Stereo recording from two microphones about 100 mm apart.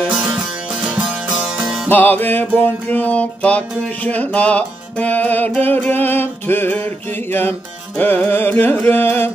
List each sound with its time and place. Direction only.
0.1 s music: 5° right (ahead or behind)
1.9 s music: 20° left (ahead or behind)